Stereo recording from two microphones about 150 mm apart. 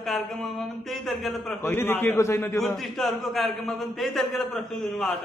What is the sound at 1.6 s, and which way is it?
Speech, 15° left (ahead or behind).